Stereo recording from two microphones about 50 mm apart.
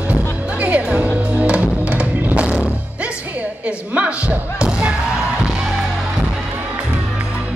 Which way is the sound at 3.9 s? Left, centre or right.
Right.